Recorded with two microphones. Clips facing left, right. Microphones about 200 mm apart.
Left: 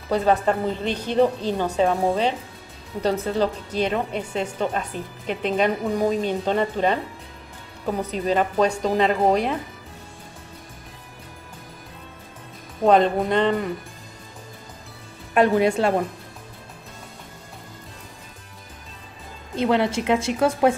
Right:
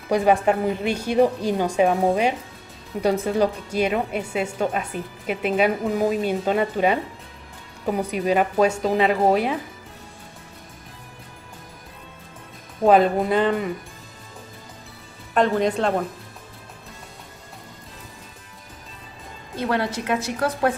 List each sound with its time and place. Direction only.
0.1 s a woman's voice: 10° right (ahead or behind)
3.0 s a woman's voice: 10° right (ahead or behind)
12.8 s speech: 5° right (ahead or behind)
15.3 s speech: 10° left (ahead or behind)
19.5 s a woman's voice: 20° left (ahead or behind)